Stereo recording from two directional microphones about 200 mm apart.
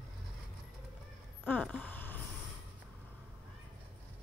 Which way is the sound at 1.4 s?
10° left (ahead or behind).